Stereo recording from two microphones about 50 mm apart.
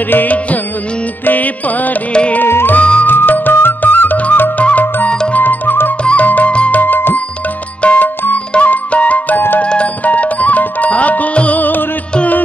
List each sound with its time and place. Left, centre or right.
0.1 s music: left
2.4 s music: left
2.7 s music: left
3.1 s music: left
6.8 s music: left
7.8 s music: left